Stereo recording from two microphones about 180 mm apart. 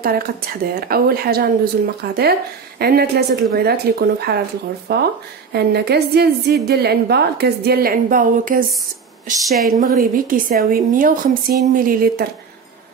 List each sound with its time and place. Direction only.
0.0 s a woman's voice: 55° right (ahead or behind)
9.4 s a woman's voice: centre (ahead or behind)
9.7 s a woman's voice: 55° right (ahead or behind)